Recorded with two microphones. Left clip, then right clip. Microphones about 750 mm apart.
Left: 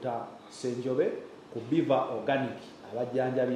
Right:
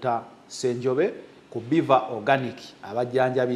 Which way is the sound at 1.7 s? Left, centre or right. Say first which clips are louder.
Right 6 dB; right.